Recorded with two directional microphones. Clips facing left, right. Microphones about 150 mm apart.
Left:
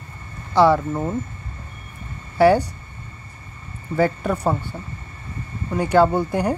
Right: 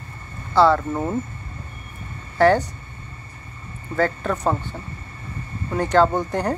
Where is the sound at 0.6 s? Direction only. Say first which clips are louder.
Left 1 dB; 15° left (ahead or behind).